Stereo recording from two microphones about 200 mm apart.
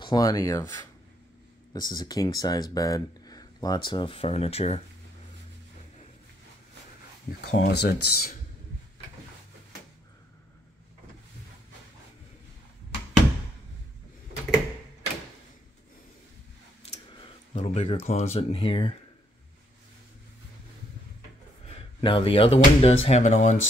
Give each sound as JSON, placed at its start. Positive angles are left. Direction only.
{"t": 0.0, "sound": "speech", "side_deg": 20}
{"t": 1.7, "sound": "speech", "side_deg": 20}
{"t": 7.4, "sound": "speech", "side_deg": 55}
{"t": 16.9, "sound": "speech", "side_deg": 35}
{"t": 21.6, "sound": "speech", "side_deg": 30}